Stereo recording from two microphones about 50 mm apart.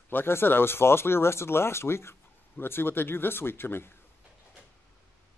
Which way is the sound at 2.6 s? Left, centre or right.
Left.